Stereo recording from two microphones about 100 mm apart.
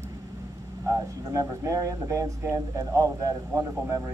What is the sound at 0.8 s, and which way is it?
Speech, 35° right (ahead or behind).